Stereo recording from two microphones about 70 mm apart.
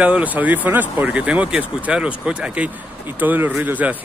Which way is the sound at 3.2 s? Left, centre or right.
Right.